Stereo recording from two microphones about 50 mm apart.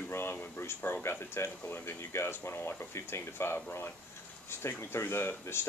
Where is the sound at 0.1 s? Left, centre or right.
Left.